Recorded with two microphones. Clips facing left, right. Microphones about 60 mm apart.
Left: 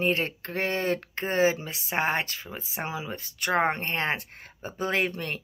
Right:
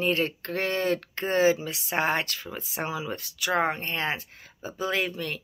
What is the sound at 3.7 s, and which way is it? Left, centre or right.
Speech, left.